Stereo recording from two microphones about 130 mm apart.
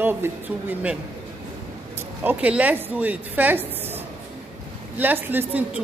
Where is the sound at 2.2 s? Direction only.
10° right (ahead or behind).